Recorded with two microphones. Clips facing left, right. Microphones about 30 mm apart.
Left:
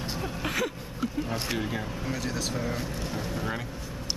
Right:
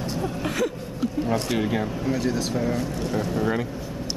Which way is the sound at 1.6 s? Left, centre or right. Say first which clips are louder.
Right 7 dB; centre.